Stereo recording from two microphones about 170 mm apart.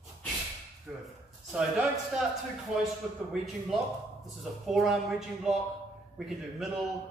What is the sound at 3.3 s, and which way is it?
A man's voice, centre (ahead or behind).